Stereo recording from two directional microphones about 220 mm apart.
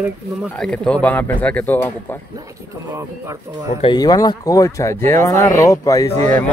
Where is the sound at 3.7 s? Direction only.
25° left (ahead or behind).